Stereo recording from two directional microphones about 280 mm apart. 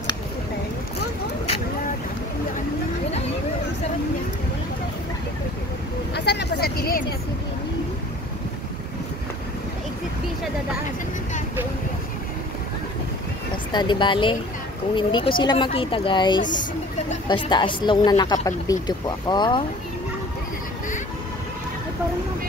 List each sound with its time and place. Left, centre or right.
6.1 s vehicle: left
13.7 s speech: centre